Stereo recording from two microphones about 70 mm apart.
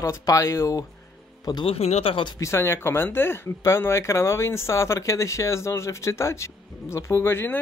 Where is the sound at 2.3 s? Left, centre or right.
Left.